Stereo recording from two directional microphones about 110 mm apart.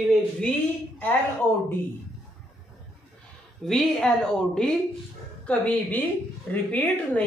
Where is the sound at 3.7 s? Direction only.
5° left (ahead or behind).